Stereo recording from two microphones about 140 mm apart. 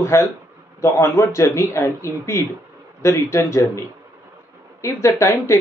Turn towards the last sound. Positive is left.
turn(degrees=20)  # may be behind; listen again after turning